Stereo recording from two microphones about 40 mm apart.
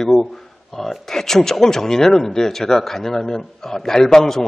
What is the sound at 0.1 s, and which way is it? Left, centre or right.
A man's voice, centre.